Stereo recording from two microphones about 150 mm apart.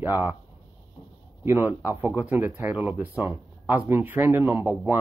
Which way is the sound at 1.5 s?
15° right (ahead or behind).